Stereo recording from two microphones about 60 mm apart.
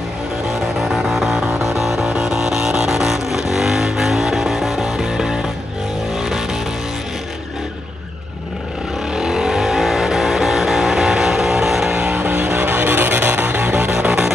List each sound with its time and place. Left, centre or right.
0.5 s music: centre
6.1 s vehicle: centre
9.1 s vehicle: centre
12.2 s music: right
13.9 s music: centre